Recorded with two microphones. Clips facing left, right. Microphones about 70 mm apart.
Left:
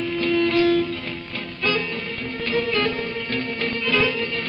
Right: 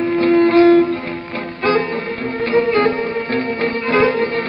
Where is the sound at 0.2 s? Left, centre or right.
Right.